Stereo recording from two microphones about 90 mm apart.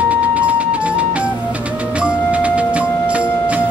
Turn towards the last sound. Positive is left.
turn(degrees=-15)  # may be behind; listen again after turning